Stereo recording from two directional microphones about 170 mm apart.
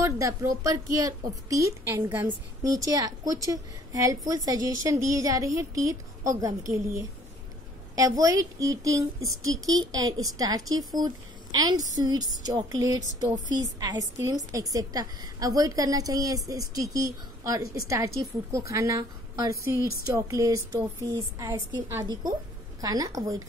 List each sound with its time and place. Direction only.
0.0 s a woman's voice: 20° right (ahead or behind)